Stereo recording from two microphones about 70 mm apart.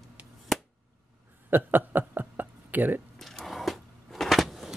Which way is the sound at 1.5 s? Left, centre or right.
Right.